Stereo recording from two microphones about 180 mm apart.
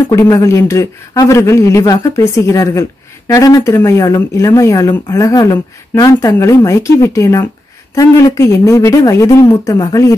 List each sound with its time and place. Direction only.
0.1 s speech: 15° left (ahead or behind)